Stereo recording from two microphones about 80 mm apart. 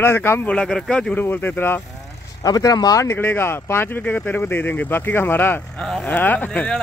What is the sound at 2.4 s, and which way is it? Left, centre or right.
Speech, left.